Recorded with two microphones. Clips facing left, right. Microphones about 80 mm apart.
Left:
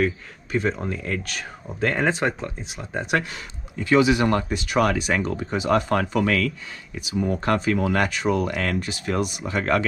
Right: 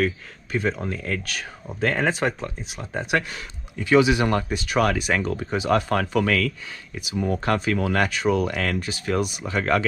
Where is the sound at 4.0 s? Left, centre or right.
Left.